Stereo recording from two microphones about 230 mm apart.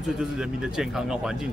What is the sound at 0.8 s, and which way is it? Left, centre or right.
Speech, centre.